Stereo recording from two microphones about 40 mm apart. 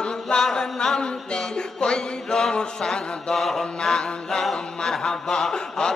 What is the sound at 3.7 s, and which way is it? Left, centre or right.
Music, left.